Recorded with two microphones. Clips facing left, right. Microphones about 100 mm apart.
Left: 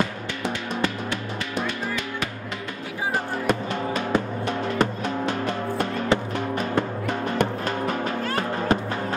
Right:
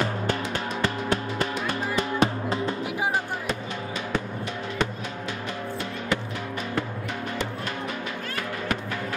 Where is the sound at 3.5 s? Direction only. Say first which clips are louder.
Left 6 dB; 50° left (ahead or behind).